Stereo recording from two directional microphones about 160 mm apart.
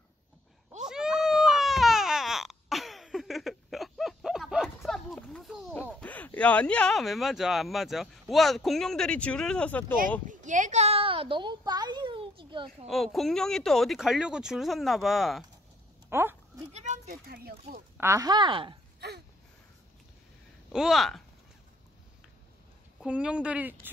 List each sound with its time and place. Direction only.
0.8 s baby cry: 5° right (ahead or behind)
5.9 s speech: 10° left (ahead or behind)
10.2 s a sound: 50° right (ahead or behind); by 12.6 s 30° right (ahead or behind)
12.8 s speech: centre (ahead or behind)
16.1 s speech: 15° right (ahead or behind)
16.7 s a sound: 45° right (ahead or behind)
17.1 s a child's voice: 75° right (ahead or behind)
17.9 s a woman's voice: 15° right (ahead or behind)
18.9 s a sound: 90° right
20.7 s speech: centre (ahead or behind)
22.9 s speech: 5° right (ahead or behind)